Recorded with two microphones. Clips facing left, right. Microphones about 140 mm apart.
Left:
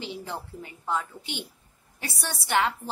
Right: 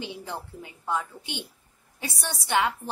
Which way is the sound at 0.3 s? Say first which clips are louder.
Even; 15° right (ahead or behind).